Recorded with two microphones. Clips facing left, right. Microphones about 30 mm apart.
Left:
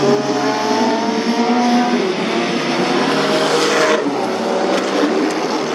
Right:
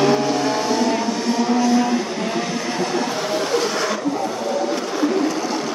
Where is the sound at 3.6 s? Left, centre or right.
Left.